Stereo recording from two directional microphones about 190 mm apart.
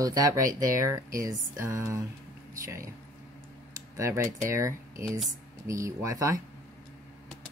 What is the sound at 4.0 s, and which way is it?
Speech, 15° right (ahead or behind).